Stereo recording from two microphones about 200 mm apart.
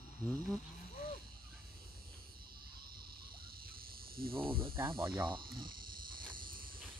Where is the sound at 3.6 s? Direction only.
50° right (ahead or behind).